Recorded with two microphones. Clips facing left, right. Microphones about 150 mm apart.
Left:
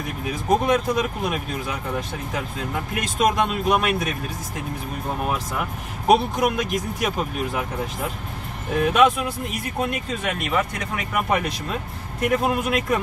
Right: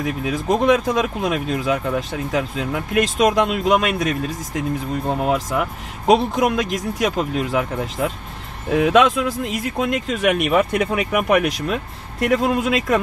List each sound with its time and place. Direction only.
0.0 s speech: 90° right
6.0 s speech: 90° right
8.7 s speech: 90° right